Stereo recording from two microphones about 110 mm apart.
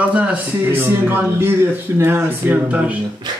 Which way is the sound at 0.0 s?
15° right (ahead or behind).